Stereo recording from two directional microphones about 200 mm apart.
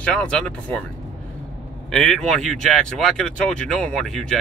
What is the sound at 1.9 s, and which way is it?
Speech, 5° left (ahead or behind).